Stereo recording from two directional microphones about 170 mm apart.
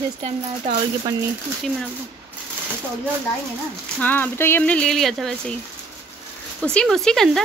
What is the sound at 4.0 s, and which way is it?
Speech, 10° left (ahead or behind).